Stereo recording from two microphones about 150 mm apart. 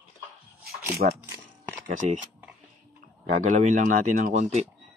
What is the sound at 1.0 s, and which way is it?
Speech, 85° right.